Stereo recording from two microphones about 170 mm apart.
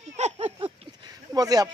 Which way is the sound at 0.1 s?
40° right (ahead or behind).